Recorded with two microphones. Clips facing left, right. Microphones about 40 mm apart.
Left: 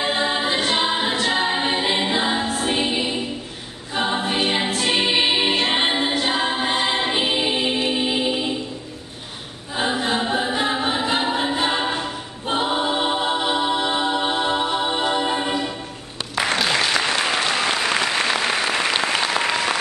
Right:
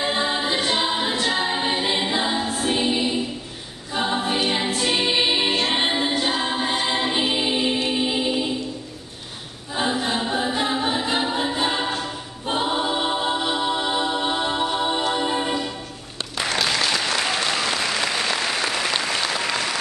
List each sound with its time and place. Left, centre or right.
0.0 s a capella: centre
1.3 s choir: centre
4.6 s music: centre
9.8 s choir: centre
16.5 s applause: centre